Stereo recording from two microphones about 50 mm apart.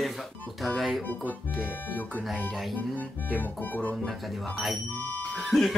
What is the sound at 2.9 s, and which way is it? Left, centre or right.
Music, left.